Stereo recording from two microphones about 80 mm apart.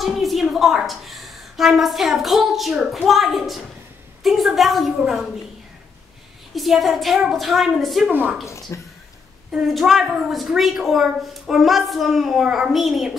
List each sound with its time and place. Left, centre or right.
0.0 s a woman's voice: centre
6.5 s a woman's voice: centre
8.7 s speech: left
9.5 s a woman's voice: centre